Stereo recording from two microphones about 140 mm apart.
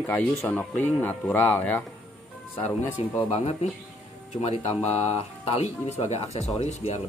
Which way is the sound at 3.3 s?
50° left (ahead or behind).